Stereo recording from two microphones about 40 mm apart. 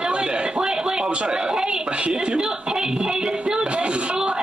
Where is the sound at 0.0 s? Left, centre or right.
Right.